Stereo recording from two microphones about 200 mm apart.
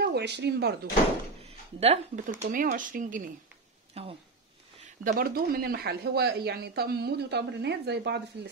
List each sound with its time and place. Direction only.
0.0 s speech: 55° right (ahead or behind)
1.4 s a sound: 30° right (ahead or behind)
2.4 s speech: 45° right (ahead or behind)
3.9 s speech: 30° right (ahead or behind)
5.0 s speech: 50° right (ahead or behind)